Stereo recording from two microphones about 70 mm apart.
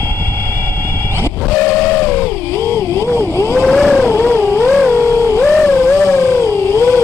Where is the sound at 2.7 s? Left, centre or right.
Left.